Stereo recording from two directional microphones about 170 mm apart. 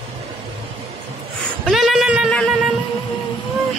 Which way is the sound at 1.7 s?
Centre (ahead or behind).